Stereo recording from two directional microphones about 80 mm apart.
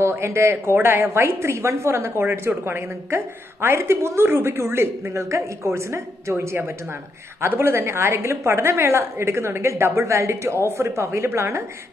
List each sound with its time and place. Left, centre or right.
0.0 s a woman's voice: right
7.4 s a woman's voice: right